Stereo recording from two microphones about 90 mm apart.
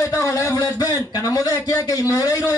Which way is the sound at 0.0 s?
35° left (ahead or behind).